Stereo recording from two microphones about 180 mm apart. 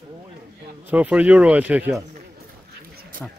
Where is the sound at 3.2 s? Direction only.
5° left (ahead or behind).